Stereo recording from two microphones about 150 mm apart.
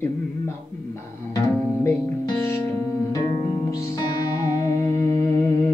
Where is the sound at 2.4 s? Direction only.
15° left (ahead or behind).